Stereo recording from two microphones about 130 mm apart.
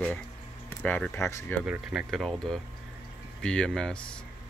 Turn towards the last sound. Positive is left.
turn(degrees=5)  # may be behind; listen again after turning